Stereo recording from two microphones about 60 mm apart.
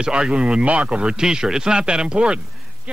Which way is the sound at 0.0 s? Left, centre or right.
Centre.